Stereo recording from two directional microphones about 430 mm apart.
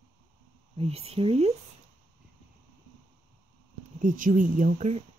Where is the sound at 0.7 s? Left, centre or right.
Centre.